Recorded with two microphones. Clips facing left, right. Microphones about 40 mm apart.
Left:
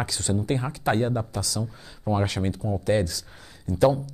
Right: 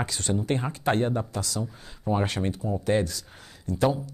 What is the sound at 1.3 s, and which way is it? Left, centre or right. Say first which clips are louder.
Speech: left 1 dB; right.